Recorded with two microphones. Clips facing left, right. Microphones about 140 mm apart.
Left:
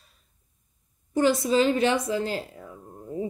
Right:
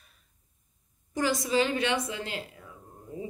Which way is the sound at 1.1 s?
30° left (ahead or behind).